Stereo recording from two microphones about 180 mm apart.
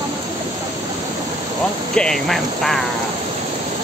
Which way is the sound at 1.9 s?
5° left (ahead or behind).